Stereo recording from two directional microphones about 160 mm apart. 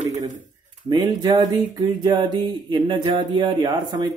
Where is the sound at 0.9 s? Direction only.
25° right (ahead or behind).